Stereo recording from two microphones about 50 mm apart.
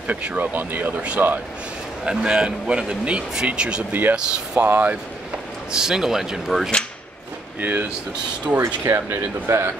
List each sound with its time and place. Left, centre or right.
0.0 s speech: right
0.6 s speech: right
1.2 s speech: centre; by 4.9 s right
5.7 s speech: centre
7.6 s speech: right
8.5 s speech: right
9.5 s speech: right